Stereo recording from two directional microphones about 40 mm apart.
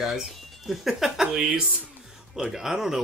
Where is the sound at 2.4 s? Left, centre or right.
Centre.